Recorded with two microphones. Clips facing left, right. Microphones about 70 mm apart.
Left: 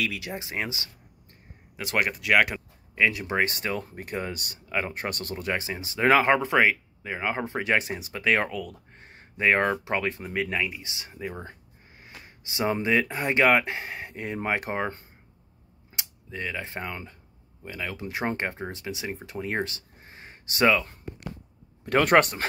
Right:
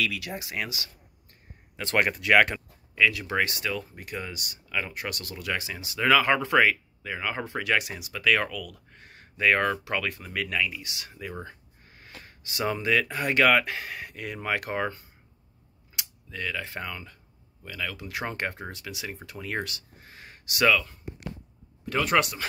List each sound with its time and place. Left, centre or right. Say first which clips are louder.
0.0 s speech: even; left
1.8 s speech: right 1 dB; centre
3.0 s speech: even; left
3.5 s speech: left 1 dB; left
6.3 s speech: even; left
21.8 s speech: left 5 dB; left